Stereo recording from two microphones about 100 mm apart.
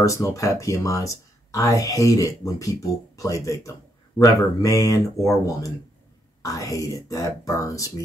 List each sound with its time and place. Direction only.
0.0 s speech: 30° left (ahead or behind)